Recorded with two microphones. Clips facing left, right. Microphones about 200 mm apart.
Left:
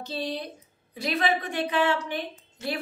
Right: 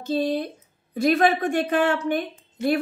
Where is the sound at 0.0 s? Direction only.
50° right (ahead or behind).